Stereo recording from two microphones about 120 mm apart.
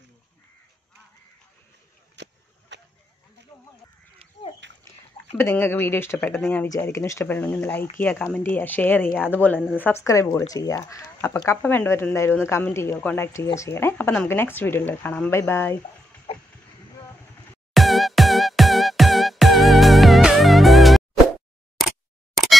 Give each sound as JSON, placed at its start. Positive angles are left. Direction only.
{"t": 5.4, "sound": "speech", "side_deg": 20}
{"t": 6.8, "sound": "speech", "side_deg": 25}
{"t": 10.9, "sound": "speech", "side_deg": 20}
{"t": 11.3, "sound": "speech", "side_deg": 30}
{"t": 11.6, "sound": "speech", "side_deg": 15}
{"t": 16.3, "sound": "a sound", "side_deg": 50}
{"t": 17.7, "sound": "music", "side_deg": 0}
{"t": 21.7, "sound": "camera", "side_deg": 0}